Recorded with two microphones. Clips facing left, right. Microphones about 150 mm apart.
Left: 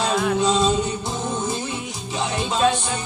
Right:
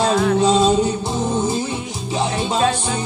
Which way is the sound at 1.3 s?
30° right (ahead or behind).